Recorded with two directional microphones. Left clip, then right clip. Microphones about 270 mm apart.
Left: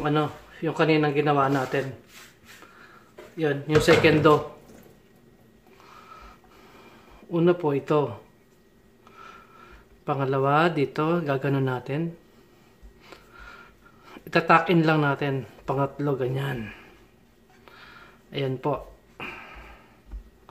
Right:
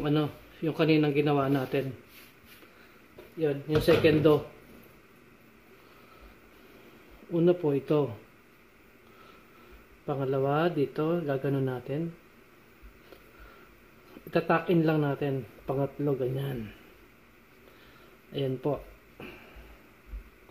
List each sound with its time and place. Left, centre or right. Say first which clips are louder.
0.0 s a man's voice: left 4 dB; centre
3.3 s speech: left 5 dB; centre
7.2 s speech: left 3 dB; centre
10.0 s speech: left 5 dB; centre
14.3 s speech: left 7 dB; centre
18.3 s a sound: left 3 dB; centre